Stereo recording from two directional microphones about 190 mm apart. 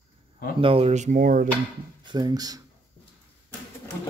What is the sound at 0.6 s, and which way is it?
Speech, 30° right (ahead or behind).